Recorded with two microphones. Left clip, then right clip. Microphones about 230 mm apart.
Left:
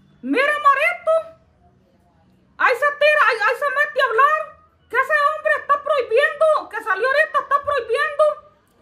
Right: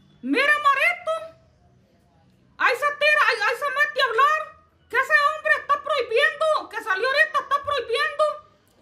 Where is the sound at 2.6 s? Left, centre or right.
Centre.